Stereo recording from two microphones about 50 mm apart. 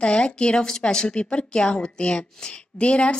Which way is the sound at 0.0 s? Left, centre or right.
Centre.